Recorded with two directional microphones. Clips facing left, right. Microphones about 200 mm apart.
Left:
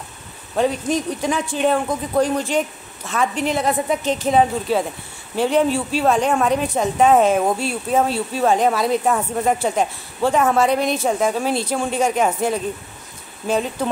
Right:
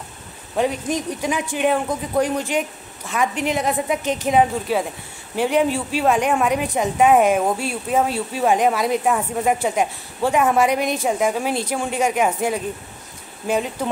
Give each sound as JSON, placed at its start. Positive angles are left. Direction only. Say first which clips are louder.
{"t": 0.6, "sound": "speech", "louder": "left 2 dB", "side_deg": -15}